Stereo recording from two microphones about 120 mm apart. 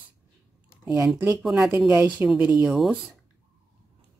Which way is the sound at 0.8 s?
25° right (ahead or behind).